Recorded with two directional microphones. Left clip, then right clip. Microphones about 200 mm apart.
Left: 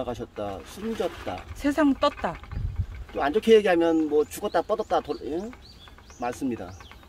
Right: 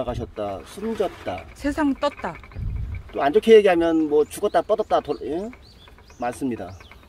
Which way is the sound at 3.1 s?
45° right (ahead or behind).